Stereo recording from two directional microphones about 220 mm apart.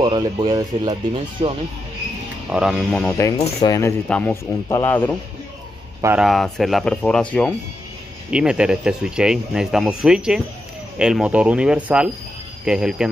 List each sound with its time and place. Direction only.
0.0 s speech: 20° right (ahead or behind)
2.5 s speech: 5° right (ahead or behind)
5.9 s speech: 10° right (ahead or behind)
6.2 s speech: centre (ahead or behind)